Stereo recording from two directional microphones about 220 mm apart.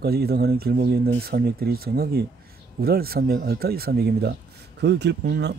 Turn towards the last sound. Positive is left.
turn(degrees=-50)  # may be behind; listen again after turning